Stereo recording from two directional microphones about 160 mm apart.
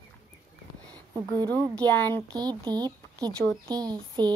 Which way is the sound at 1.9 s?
10° left (ahead or behind).